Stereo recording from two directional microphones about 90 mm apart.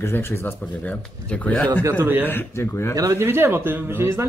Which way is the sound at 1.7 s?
35° right (ahead or behind).